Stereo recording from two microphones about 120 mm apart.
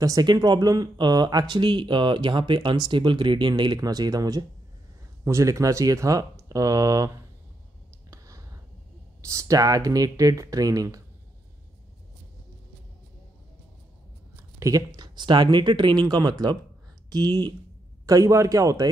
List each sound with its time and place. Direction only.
0.0 s speech: 30° right (ahead or behind)
9.3 s speech: 30° right (ahead or behind)
14.6 s speech: 35° right (ahead or behind)